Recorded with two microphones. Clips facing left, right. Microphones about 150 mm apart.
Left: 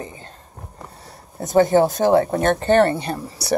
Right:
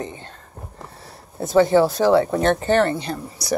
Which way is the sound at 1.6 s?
50° left (ahead or behind).